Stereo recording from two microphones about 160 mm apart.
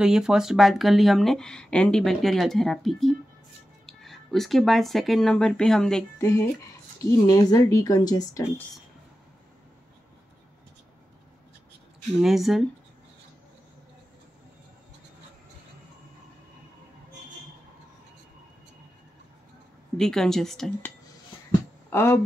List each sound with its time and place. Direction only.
0.0 s speech: 5° right (ahead or behind)
6.1 s a woman's voice: 20° left (ahead or behind)
12.2 s speech: centre (ahead or behind)
20.0 s speech: 5° left (ahead or behind)
21.9 s speech: 15° left (ahead or behind)